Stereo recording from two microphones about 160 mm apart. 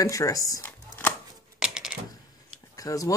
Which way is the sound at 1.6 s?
5° right (ahead or behind).